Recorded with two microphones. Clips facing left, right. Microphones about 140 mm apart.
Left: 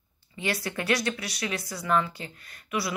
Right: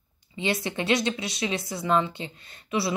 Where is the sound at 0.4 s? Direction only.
25° right (ahead or behind).